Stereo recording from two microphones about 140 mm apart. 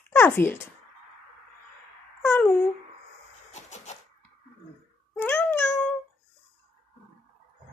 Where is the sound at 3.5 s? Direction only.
55° left (ahead or behind).